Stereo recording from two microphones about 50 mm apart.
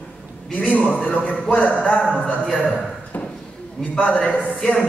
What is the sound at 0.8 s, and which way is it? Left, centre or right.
A man's voice, left.